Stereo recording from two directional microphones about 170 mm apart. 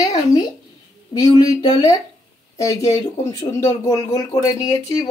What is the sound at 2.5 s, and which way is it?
Speech, 20° left (ahead or behind).